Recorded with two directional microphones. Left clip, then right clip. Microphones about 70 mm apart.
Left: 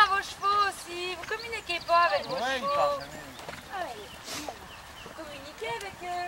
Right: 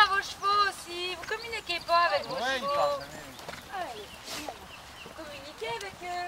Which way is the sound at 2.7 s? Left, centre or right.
Centre.